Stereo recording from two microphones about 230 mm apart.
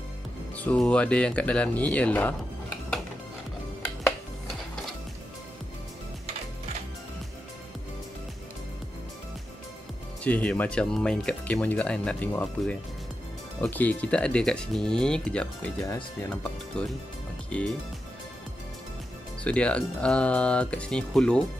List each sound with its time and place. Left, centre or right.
0.6 s speech: centre
10.2 s speech: centre
19.4 s speech: centre